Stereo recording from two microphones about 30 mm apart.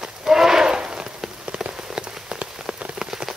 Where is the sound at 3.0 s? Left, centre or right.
Centre.